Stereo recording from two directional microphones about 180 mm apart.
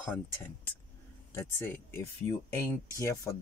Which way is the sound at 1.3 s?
15° left (ahead or behind).